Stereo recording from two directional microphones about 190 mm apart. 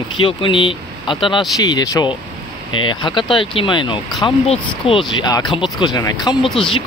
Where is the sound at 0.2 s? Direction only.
25° left (ahead or behind).